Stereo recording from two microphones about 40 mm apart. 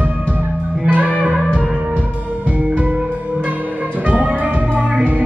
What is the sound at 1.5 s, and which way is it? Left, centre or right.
Music, right.